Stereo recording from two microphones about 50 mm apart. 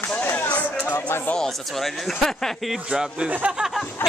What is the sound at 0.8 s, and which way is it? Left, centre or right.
Speech, left.